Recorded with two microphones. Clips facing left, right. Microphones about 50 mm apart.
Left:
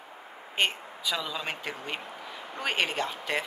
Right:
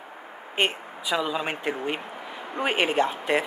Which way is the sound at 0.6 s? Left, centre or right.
Right.